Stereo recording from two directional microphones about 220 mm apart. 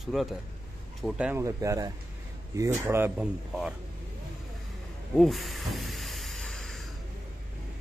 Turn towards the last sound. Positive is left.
turn(degrees=0)  # may be behind; listen again after turning